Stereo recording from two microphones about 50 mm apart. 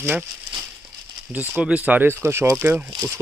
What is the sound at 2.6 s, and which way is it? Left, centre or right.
Speech, right.